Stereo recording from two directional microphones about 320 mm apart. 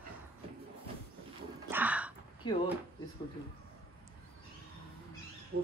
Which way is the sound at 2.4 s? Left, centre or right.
Centre.